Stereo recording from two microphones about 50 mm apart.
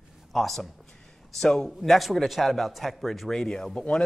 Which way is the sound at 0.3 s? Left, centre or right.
Centre.